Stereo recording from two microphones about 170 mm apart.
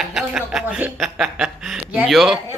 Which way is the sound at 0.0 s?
5° right (ahead or behind).